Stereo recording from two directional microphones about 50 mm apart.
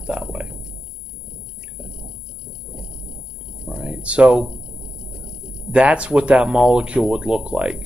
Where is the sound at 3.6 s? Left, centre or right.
Centre.